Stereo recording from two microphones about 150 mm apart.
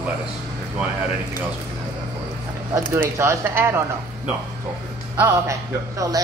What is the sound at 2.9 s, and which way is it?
Speech, 15° right (ahead or behind).